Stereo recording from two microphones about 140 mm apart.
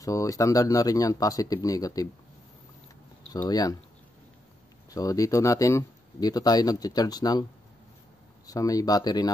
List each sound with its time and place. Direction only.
0.0 s speech: 20° left (ahead or behind)
3.4 s speech: 30° left (ahead or behind)
4.9 s speech: 25° left (ahead or behind)
8.5 s speech: 25° left (ahead or behind)